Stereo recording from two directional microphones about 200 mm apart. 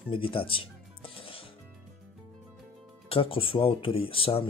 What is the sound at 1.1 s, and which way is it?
Music, 25° left (ahead or behind).